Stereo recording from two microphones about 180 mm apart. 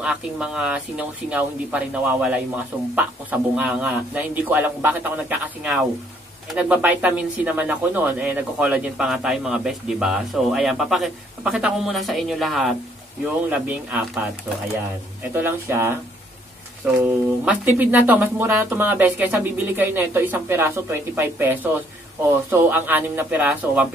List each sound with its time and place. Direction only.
0.0 s speech: 5° right (ahead or behind)
15.3 s speech: 10° right (ahead or behind)